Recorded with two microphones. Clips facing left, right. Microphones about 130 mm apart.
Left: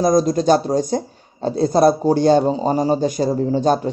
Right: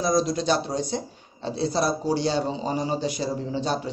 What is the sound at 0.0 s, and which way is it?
A man's voice, 45° left (ahead or behind).